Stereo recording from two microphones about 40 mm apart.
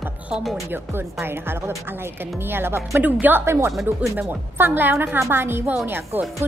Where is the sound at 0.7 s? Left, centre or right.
Right.